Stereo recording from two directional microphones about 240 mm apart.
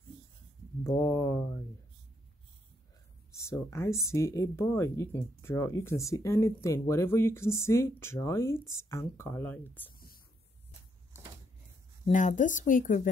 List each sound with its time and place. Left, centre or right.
0.8 s speech: centre
3.4 s speech: centre
9.9 s a sound: left
12.1 s speech: left